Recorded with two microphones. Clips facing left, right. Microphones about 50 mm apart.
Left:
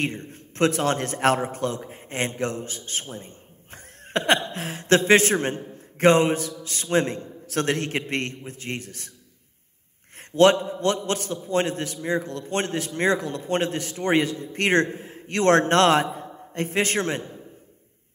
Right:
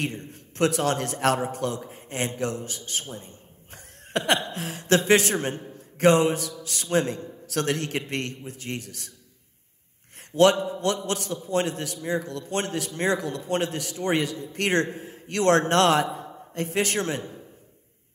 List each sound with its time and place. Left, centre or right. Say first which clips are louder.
0.0 s a man's voice: left 3 dB; left
10.1 s a man's voice: left 2 dB; left